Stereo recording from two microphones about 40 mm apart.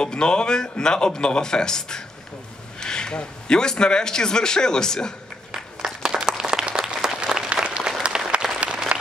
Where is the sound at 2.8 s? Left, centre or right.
Centre.